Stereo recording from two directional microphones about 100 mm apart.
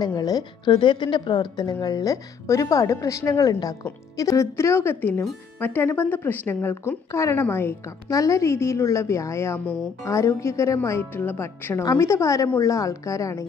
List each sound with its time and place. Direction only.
0.0 s a woman's voice: 40° left (ahead or behind); by 7.7 s 20° left (ahead or behind)
8.1 s speech: 30° left (ahead or behind)